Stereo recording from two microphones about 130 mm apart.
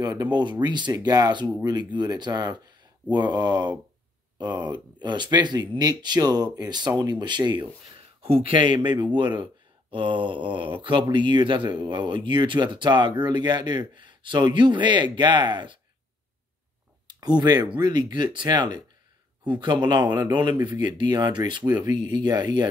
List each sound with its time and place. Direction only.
0.0 s speech: 35° right (ahead or behind)
8.2 s speech: 45° right (ahead or behind)
17.1 s speech: 35° right (ahead or behind)